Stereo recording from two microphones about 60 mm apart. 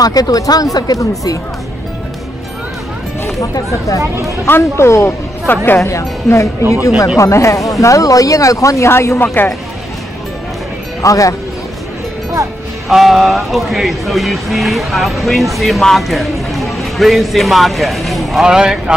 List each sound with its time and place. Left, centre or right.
0.0 s a woman's voice: left
3.3 s speech: left
4.0 s speech: right
4.5 s speech: left
5.5 s speech: left
5.9 s speech: left
9.2 s speech: left
11.0 s speech: left
12.8 s speech: centre
18.4 s speech: centre